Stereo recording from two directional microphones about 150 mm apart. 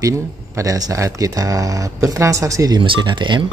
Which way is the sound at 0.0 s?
20° right (ahead or behind).